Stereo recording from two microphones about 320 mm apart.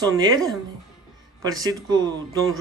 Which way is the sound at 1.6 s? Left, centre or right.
Centre.